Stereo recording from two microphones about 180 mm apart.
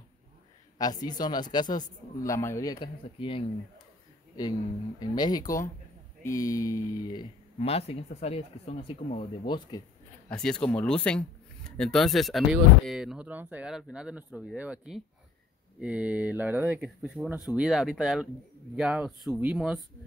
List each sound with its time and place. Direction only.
0.7 s a man's voice: 20° left (ahead or behind)
5.0 s a man's voice: 20° left (ahead or behind)
7.5 s a man's voice: 35° left (ahead or behind)
10.3 s speech: 5° left (ahead or behind)